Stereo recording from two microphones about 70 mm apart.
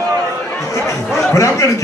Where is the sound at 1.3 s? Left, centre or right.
Left.